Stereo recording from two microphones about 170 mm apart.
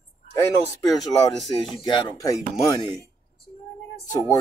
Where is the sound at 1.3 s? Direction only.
Centre (ahead or behind).